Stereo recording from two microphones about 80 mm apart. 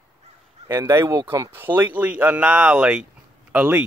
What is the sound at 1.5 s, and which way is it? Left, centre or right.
Speech, right.